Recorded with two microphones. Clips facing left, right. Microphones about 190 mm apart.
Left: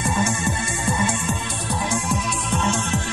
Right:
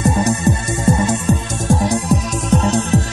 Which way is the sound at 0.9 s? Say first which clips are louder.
Right 8 dB; 40° right (ahead or behind).